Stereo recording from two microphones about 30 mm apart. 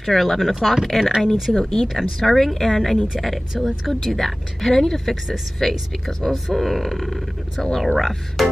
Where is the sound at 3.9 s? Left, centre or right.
Centre.